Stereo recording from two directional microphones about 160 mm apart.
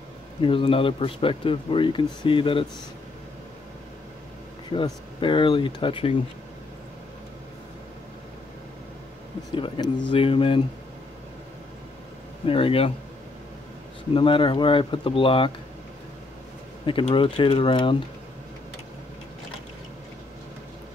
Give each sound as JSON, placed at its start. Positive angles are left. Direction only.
{"t": 0.4, "sound": "speech", "side_deg": 35}
{"t": 4.6, "sound": "speech", "side_deg": 30}
{"t": 9.5, "sound": "speech", "side_deg": 25}
{"t": 12.4, "sound": "speech", "side_deg": 35}
{"t": 14.1, "sound": "speech", "side_deg": 30}
{"t": 16.8, "sound": "speech", "side_deg": 30}